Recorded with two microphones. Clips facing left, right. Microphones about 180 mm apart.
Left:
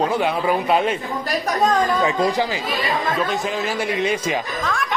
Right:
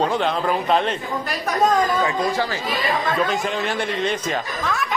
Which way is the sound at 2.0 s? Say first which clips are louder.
Left 2 dB; 20° left (ahead or behind).